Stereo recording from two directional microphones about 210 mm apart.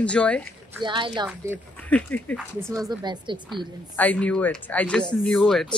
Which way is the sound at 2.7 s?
20° right (ahead or behind).